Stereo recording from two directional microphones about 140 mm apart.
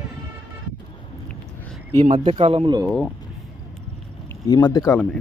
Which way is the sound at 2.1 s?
40° right (ahead or behind).